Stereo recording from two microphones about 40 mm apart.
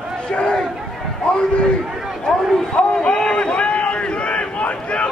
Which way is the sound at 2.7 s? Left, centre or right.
Left.